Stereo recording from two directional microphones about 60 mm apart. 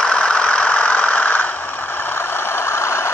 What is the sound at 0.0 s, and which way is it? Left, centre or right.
Engine, centre.